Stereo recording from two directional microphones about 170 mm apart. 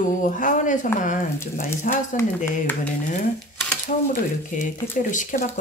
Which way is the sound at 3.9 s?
50° left (ahead or behind).